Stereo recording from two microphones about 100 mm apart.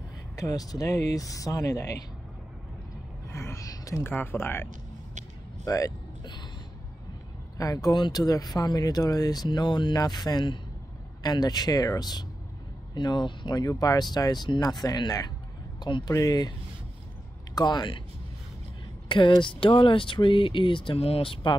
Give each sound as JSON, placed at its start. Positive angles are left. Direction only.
{"t": 0.4, "sound": "speech", "side_deg": 40}
{"t": 3.3, "sound": "a sound", "side_deg": 25}
{"t": 4.0, "sound": "speech", "side_deg": 20}
{"t": 5.7, "sound": "speech", "side_deg": 35}
{"t": 7.5, "sound": "speech", "side_deg": 35}
{"t": 17.6, "sound": "speech", "side_deg": 45}
{"t": 19.0, "sound": "speech", "side_deg": 55}